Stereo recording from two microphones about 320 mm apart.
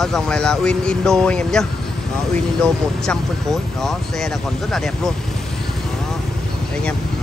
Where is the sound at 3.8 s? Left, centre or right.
Centre.